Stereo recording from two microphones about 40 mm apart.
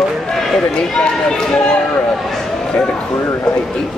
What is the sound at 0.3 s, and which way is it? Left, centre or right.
Speech, centre.